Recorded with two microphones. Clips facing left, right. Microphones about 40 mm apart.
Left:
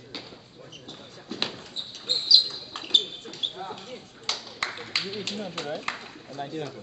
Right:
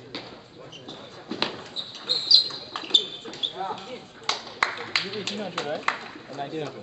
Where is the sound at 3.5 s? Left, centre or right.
Centre.